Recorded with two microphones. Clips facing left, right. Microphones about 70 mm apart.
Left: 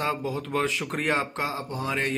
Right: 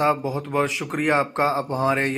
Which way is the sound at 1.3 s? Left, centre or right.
Right.